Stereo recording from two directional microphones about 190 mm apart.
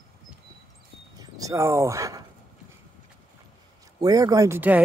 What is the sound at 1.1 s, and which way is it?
Speech, 20° right (ahead or behind).